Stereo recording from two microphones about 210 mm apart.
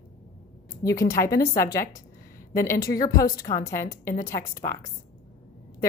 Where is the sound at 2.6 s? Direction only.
15° left (ahead or behind).